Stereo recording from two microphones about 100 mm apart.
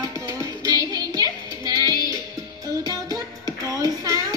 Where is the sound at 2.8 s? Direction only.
40° right (ahead or behind).